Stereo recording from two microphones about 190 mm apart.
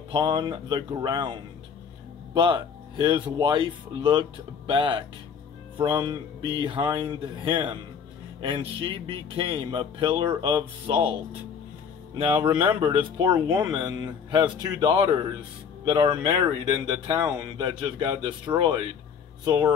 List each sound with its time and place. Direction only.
0.1 s speech: 25° right (ahead or behind)
12.3 s speech: 10° right (ahead or behind)
12.8 s speech: 25° right (ahead or behind)